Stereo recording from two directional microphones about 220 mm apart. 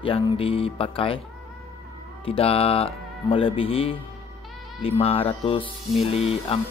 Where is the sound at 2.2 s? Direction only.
25° left (ahead or behind).